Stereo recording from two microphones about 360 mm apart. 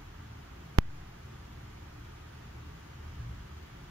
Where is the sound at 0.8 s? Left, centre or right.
Right.